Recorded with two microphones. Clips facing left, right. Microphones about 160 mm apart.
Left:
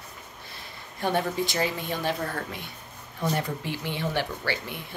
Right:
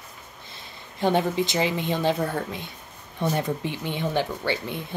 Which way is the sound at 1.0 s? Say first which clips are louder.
Right 4 dB; 20° right (ahead or behind).